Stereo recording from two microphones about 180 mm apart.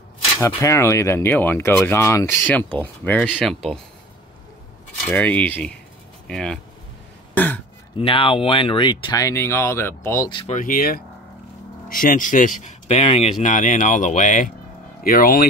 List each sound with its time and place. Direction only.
0.4 s speech: 15° left (ahead or behind)
5.0 s speech: 10° left (ahead or behind)
7.3 s throat clearing: 10° left (ahead or behind)
8.0 s speech: 30° left (ahead or behind)
10.4 s speech: 45° left (ahead or behind)